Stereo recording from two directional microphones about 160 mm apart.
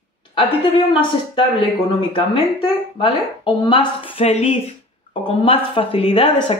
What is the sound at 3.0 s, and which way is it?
Speech, 35° left (ahead or behind).